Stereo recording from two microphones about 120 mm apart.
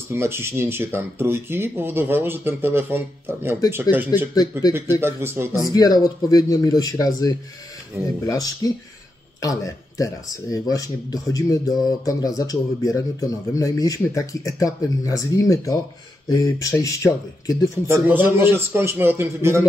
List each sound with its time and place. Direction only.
0.1 s speech: 20° right (ahead or behind)
4.4 s speech: 35° left (ahead or behind)
5.0 s speech: 20° right (ahead or behind)
5.6 s speech: 30° left (ahead or behind)
17.8 s speech: 20° right (ahead or behind)